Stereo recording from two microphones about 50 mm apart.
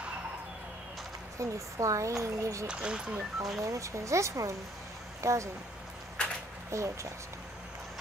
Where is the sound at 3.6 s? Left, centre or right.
Right.